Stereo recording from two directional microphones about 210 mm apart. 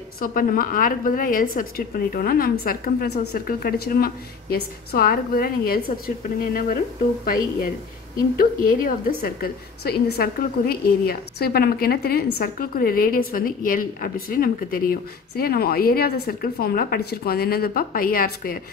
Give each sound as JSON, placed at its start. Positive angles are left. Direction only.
{"t": 0.2, "sound": "a woman's voice", "side_deg": 40}
{"t": 8.4, "sound": "a woman's voice", "side_deg": 40}